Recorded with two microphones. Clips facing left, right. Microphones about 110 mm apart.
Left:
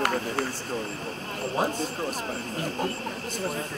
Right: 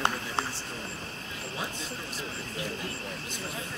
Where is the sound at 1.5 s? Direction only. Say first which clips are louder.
Left 11 dB; 45° left (ahead or behind).